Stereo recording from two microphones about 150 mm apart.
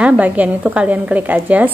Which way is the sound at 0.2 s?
10° right (ahead or behind).